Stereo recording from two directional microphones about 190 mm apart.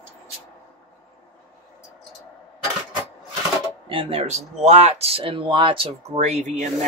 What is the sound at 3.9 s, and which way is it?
Speech, 30° right (ahead or behind).